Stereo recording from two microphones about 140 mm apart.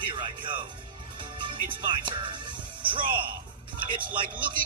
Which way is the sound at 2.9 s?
35° right (ahead or behind).